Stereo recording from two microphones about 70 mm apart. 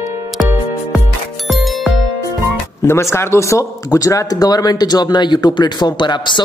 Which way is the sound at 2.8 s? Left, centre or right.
Left.